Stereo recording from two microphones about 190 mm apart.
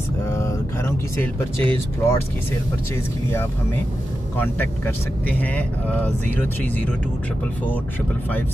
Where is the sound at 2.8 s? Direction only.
15° left (ahead or behind).